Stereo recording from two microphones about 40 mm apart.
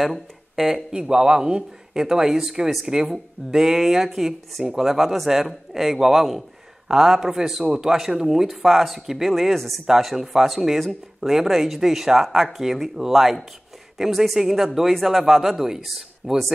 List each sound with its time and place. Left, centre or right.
0.0 s speech: centre
0.9 s speech: centre